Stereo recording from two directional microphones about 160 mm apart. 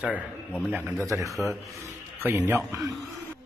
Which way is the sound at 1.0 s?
20° right (ahead or behind).